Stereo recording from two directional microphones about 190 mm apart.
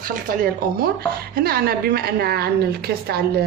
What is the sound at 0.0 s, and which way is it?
A woman's voice, 45° right (ahead or behind).